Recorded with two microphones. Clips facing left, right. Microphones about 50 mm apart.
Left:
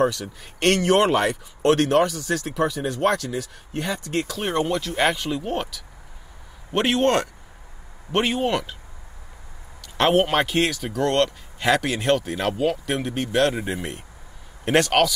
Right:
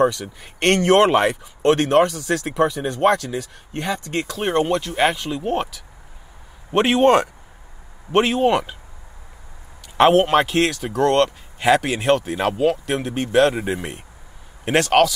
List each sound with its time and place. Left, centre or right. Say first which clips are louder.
0.0 s speech: right 3 dB; centre
0.8 s speech: right 6 dB; centre
2.5 s speech: right 5 dB; centre
2.8 s speech: right 3 dB; right
3.1 s speech: right 6 dB; centre
5.0 s speech: right 1 dB; centre
8.5 s speech: right 6 dB; centre
10.1 s speech: right 4 dB; centre